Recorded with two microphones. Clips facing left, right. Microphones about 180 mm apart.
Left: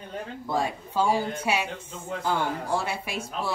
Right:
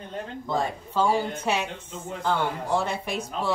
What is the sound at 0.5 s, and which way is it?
A man's voice, 10° left (ahead or behind).